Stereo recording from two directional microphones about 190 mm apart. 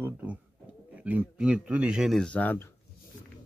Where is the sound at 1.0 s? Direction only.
5° right (ahead or behind).